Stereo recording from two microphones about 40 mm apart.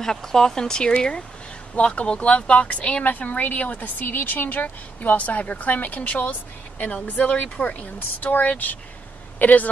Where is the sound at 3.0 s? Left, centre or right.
Left.